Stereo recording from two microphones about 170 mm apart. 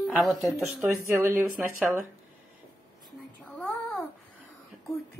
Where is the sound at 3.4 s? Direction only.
10° left (ahead or behind).